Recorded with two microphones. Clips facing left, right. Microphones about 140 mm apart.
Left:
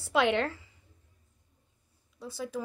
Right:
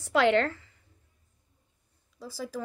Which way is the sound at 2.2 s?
Centre (ahead or behind).